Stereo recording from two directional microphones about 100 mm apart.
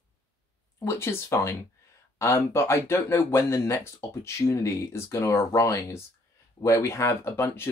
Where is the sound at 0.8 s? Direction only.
25° left (ahead or behind).